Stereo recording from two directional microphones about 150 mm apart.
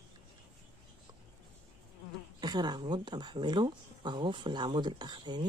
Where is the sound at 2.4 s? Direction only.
25° right (ahead or behind).